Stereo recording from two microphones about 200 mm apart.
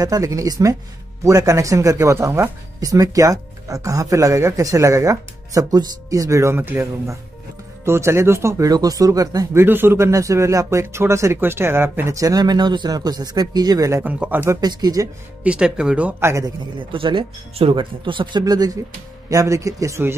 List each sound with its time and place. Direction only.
0.0 s speech: 15° right (ahead or behind)
15.4 s speech: 5° right (ahead or behind)
16.9 s speech: 25° right (ahead or behind)